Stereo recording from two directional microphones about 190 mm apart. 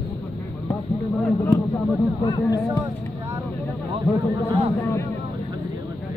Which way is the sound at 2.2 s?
20° left (ahead or behind).